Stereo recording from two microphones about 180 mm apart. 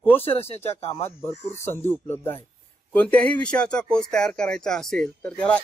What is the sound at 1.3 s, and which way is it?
Speech, 15° left (ahead or behind).